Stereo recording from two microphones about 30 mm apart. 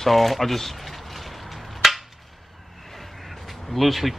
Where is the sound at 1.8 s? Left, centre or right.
Centre.